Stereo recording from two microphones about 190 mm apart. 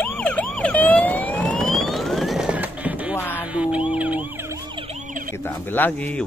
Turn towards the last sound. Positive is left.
turn(degrees=10)  # may be behind; listen again after turning